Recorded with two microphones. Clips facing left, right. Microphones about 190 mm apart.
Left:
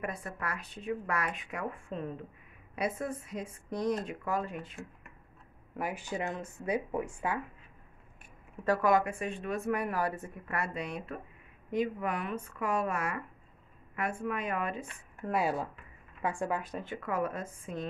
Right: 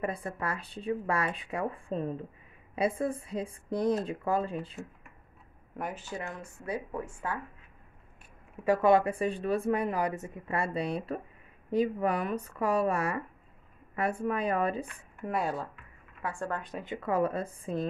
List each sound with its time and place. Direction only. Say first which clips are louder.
0.0 s a woman's voice: right 4 dB; 30° right (ahead or behind)
5.8 s speech: left 2 dB; 10° left (ahead or behind)
8.8 s a woman's voice: right 5 dB; 30° right (ahead or behind)
15.2 s speech: left 1 dB; centre (ahead or behind)
16.2 s speech: left 2 dB; 15° left (ahead or behind)
16.8 s speech: right 3 dB; 20° right (ahead or behind)
17.1 s a woman's voice: right 5 dB; 30° right (ahead or behind)